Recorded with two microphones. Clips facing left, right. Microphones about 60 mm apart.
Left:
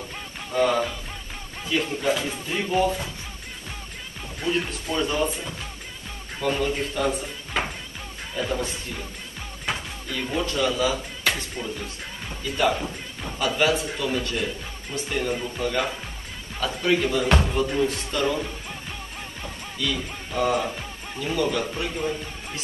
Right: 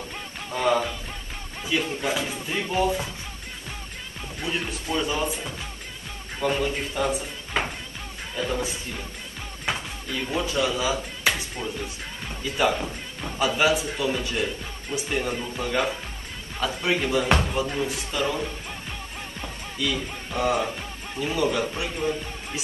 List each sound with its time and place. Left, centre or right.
0.6 s speech: centre
4.4 s speech: centre